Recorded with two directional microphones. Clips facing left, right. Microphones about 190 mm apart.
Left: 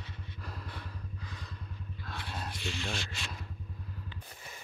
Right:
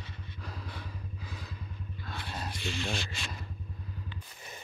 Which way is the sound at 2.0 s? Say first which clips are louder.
Right 1 dB; centre (ahead or behind).